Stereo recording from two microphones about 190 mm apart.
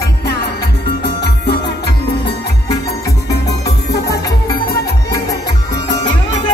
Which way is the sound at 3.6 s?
60° left (ahead or behind).